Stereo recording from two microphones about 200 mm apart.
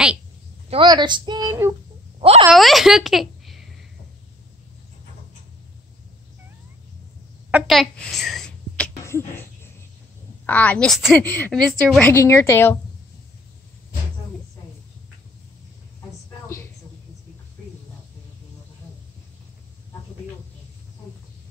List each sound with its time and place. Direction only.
0.7 s a woman's voice: 25° right (ahead or behind)
2.1 s a sound: 30° right (ahead or behind)
2.5 s a woman's voice: centre (ahead or behind)
7.5 s speech: centre (ahead or behind)
10.4 s a woman's voice: 10° left (ahead or behind)